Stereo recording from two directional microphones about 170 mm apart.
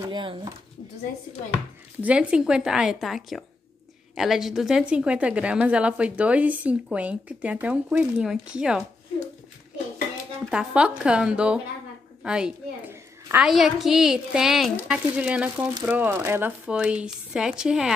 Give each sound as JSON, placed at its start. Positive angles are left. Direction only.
{"t": 0.0, "sound": "speech", "side_deg": -30}
{"t": 2.0, "sound": "a woman's voice", "side_deg": -5}
{"t": 10.5, "sound": "a woman's voice", "side_deg": -5}